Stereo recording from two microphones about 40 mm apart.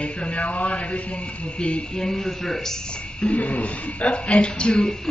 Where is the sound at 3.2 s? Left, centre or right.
Left.